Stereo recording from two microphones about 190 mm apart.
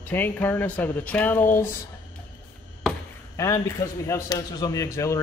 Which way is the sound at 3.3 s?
20° left (ahead or behind).